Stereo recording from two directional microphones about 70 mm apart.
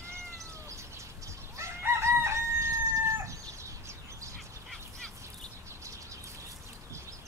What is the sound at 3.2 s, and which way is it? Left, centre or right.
Chicken, right.